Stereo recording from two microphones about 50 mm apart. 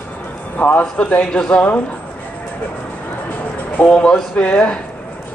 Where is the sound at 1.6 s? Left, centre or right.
Left.